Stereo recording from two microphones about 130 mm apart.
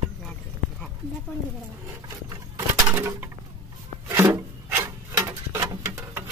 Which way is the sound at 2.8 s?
25° right (ahead or behind).